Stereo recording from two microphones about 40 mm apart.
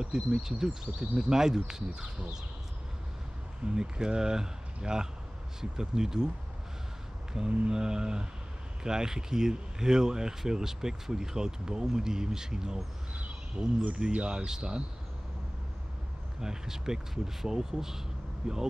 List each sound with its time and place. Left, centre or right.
0.0 s speech: centre
3.6 s speech: centre
7.3 s speech: right
16.3 s speech: centre